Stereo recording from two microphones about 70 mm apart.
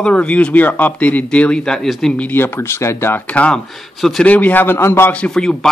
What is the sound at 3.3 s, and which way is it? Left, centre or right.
Speech, centre.